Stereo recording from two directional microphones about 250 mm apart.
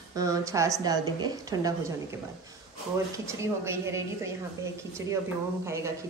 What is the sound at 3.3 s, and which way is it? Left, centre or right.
A woman's voice, centre.